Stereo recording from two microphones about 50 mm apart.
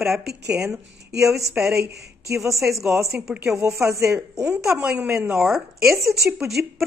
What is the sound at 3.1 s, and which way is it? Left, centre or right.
Speech, right.